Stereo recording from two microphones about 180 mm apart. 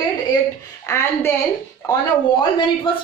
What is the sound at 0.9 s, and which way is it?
Speech, 15° left (ahead or behind).